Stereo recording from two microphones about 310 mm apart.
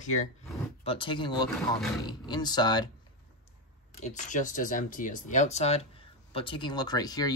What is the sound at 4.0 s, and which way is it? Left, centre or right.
Speech, left.